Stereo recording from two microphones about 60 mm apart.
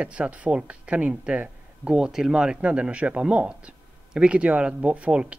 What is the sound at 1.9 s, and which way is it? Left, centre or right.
Speech, centre.